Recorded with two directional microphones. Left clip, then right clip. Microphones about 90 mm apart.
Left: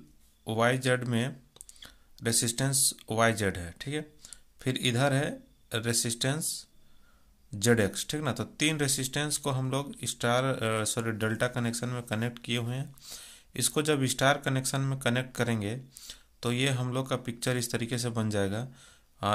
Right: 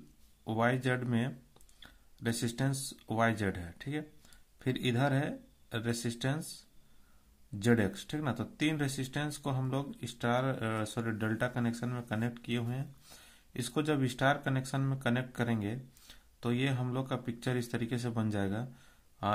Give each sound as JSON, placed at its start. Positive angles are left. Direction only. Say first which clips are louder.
{"t": 0.4, "sound": "speech", "louder": "left 4 dB", "side_deg": 25}
{"t": 7.5, "sound": "speech", "louder": "left 5 dB", "side_deg": 25}